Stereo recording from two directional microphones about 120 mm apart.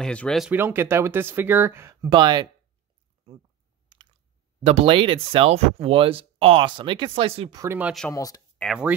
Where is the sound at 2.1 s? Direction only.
35° right (ahead or behind).